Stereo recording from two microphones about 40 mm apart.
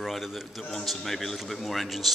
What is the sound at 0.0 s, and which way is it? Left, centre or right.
A man's voice, centre.